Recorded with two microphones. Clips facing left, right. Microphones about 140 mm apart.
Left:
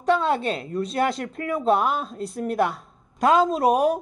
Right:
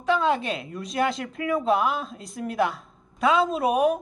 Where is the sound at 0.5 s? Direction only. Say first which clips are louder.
Left 5 dB; 35° left (ahead or behind).